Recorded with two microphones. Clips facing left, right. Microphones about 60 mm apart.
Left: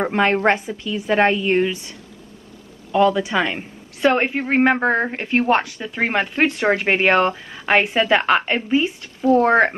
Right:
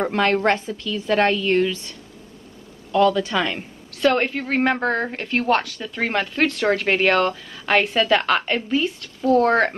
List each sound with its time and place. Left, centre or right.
0.0 s a woman's voice: left
2.9 s a woman's voice: centre